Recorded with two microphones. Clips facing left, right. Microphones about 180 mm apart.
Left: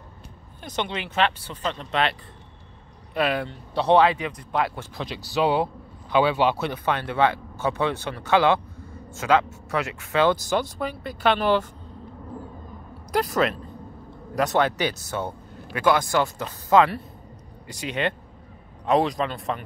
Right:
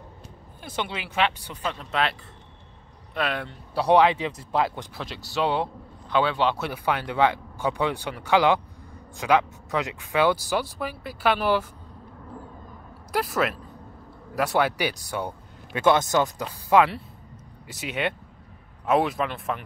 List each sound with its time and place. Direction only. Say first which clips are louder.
0.7 s speech: left 2 dB; 10° right (ahead or behind)
3.2 s speech: left 4 dB; centre (ahead or behind)
4.2 s speech: right 1 dB; 25° right (ahead or behind)
4.9 s speech: left 3 dB; centre (ahead or behind)
6.6 s speech: left 1 dB; 10° right (ahead or behind)
13.1 s speech: left 3 dB; 5° right (ahead or behind)
15.7 s speech: right 1 dB; 25° right (ahead or behind); by 19.6 s centre (ahead or behind)